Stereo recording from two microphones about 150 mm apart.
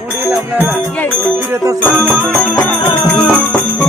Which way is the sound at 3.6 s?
15° left (ahead or behind).